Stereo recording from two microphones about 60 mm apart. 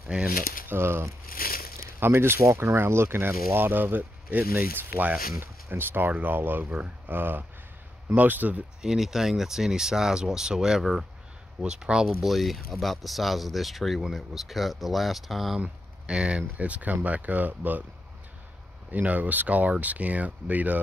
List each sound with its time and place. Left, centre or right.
0.1 s speech: centre
0.7 s speech: right
8.8 s speech: centre
12.3 s speech: centre
15.6 s speech: centre
18.9 s speech: right